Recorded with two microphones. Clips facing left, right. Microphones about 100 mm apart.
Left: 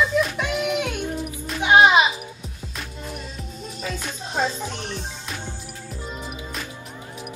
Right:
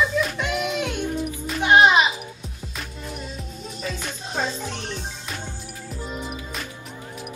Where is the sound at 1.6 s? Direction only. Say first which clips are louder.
Left 1 dB; 15° left (ahead or behind).